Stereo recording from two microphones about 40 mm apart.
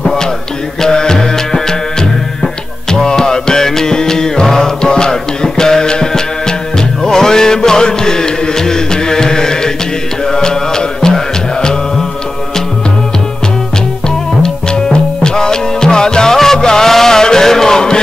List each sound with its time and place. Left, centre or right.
0.0 s music: centre
14.0 s music: centre